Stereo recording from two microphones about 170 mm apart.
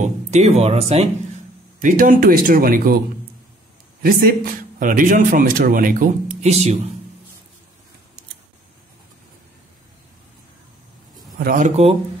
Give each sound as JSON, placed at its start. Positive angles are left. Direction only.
{"t": 0.0, "sound": "speech", "side_deg": -40}
{"t": 1.8, "sound": "speech", "side_deg": -50}
{"t": 4.0, "sound": "a man's voice", "side_deg": -60}
{"t": 11.3, "sound": "speech", "side_deg": -60}
{"t": 11.6, "sound": "speech", "side_deg": -40}